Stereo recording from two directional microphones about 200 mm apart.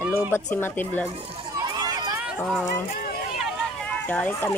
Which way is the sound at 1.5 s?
20° right (ahead or behind).